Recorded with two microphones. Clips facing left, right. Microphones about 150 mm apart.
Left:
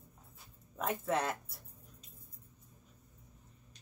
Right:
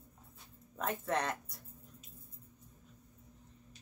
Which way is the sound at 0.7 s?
5° left (ahead or behind).